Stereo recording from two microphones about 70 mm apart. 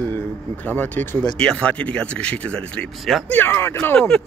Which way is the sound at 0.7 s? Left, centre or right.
Left.